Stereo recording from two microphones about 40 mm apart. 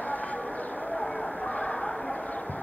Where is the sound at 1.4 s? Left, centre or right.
Left.